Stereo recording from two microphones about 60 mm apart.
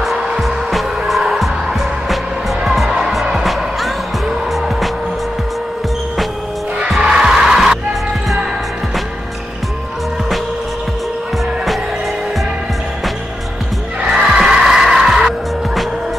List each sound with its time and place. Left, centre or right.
0.0 s music: centre
7.0 s music: centre
14.0 s music: centre